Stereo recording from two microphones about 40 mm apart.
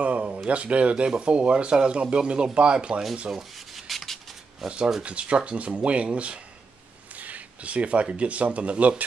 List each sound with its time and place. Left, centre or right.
0.0 s a sound: right
0.5 s speech: right
3.3 s rub: centre
4.6 s speech: right
7.2 s speech: right